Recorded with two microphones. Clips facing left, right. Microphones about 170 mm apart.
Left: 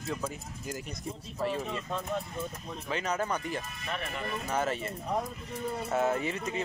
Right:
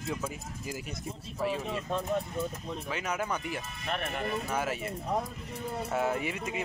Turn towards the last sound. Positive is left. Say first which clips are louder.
# left 1 dB
turn(degrees=-10)  # may be behind; listen again after turning